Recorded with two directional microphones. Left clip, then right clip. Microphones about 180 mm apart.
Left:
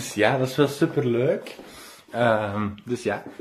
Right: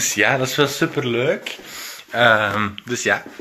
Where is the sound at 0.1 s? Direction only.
Centre (ahead or behind).